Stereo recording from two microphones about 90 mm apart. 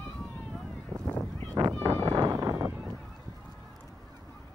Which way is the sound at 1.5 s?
45° right (ahead or behind).